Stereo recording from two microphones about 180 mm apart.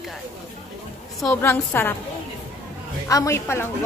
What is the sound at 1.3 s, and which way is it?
Speech, 10° left (ahead or behind).